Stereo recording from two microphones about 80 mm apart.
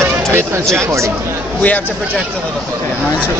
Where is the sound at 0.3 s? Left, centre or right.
Right.